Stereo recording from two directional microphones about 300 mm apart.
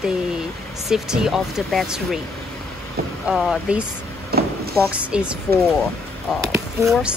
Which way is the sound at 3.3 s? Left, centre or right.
Centre.